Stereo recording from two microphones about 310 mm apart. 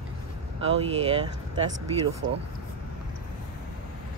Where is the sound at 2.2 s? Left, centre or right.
Right.